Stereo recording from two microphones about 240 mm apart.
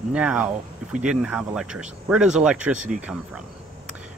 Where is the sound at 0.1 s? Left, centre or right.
Centre.